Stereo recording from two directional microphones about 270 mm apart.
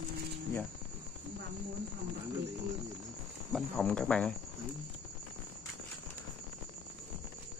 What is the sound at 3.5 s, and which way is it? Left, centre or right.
Speech, centre.